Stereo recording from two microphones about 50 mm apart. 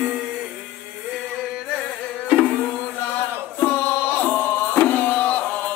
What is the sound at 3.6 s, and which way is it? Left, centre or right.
Music, left.